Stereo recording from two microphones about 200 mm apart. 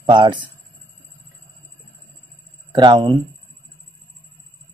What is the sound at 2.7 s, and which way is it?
Speech, 25° right (ahead or behind).